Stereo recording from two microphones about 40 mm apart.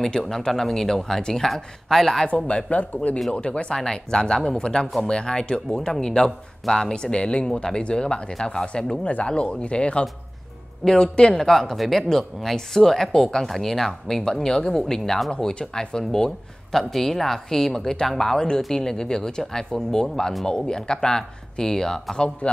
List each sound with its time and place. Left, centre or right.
0.0 s speech: centre
2.2 s speech: left
3.7 s speech: centre
11.3 s speech: centre